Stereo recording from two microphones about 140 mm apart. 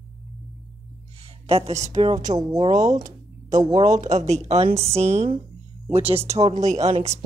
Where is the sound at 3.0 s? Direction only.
60° right (ahead or behind).